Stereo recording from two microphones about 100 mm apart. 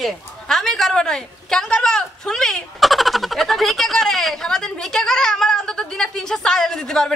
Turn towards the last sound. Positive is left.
turn(degrees=5)  # may be behind; listen again after turning